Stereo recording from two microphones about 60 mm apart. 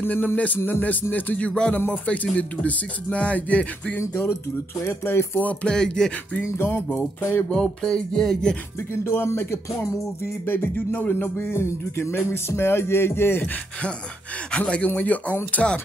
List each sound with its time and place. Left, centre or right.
0.0 s speech: left
1.1 s music: left
1.5 s a sound: centre
1.9 s music: left
4.0 s speech: left
5.5 s a sound: centre
6.4 s speech: left
7.8 s a sound: centre
8.9 s speech: left
14.6 s music: left